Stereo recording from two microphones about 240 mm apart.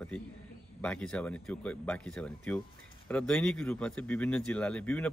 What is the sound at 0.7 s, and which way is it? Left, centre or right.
Speech, centre.